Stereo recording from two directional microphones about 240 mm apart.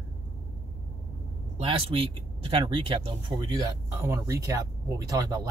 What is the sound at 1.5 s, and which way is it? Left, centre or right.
Speech, right.